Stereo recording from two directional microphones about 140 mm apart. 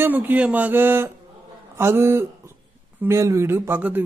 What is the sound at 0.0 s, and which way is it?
A man's voice, 15° right (ahead or behind).